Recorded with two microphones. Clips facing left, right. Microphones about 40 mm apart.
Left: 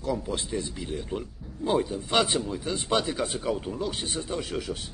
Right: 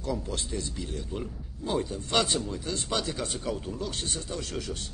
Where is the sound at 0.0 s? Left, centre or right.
Centre.